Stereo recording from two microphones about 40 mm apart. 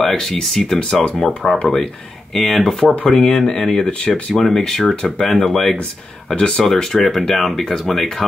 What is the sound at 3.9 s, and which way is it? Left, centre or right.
Speech, left.